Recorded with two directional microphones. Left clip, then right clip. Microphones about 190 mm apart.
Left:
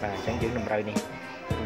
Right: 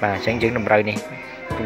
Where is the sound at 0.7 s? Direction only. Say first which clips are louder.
Right 14 dB; 15° right (ahead or behind).